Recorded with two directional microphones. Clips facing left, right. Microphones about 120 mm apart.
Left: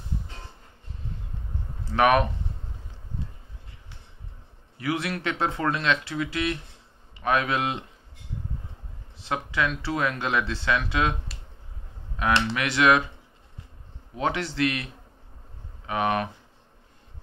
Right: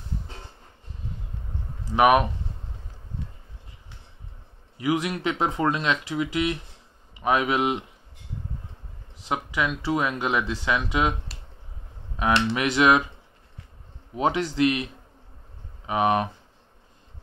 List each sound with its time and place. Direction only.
1.9 s speech: 15° right (ahead or behind)
4.7 s speech: 20° right (ahead or behind)
9.3 s speech: 15° right (ahead or behind)
12.2 s a man's voice: 20° right (ahead or behind)
14.1 s a man's voice: 20° right (ahead or behind)
15.9 s a man's voice: 20° right (ahead or behind)